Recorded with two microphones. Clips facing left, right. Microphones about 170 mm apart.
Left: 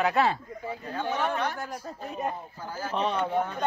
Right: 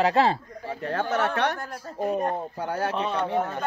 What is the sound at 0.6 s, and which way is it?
Speech, 85° right.